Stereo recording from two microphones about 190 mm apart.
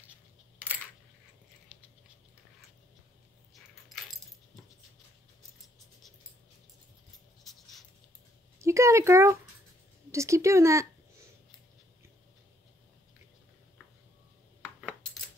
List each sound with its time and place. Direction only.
3.5 s keys jangling: centre (ahead or behind)
7.5 s a sound: centre (ahead or behind)
8.5 s speech: 15° right (ahead or behind)
14.6 s coin: 5° right (ahead or behind)